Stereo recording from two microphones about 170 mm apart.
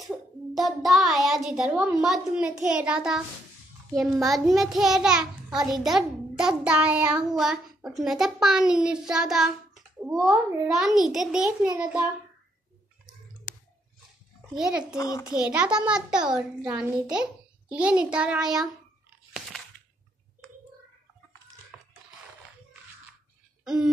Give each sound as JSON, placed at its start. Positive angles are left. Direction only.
{"t": 0.0, "sound": "a child's voice", "side_deg": 0}
{"t": 4.3, "sound": "a child's voice", "side_deg": 0}
{"t": 14.5, "sound": "a child's voice", "side_deg": -5}
{"t": 15.0, "sound": "a child's voice", "side_deg": 20}
{"t": 15.2, "sound": "a child's voice", "side_deg": -5}
{"t": 23.6, "sound": "a sound", "side_deg": -5}